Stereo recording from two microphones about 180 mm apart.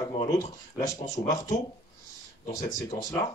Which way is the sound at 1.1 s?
20° left (ahead or behind).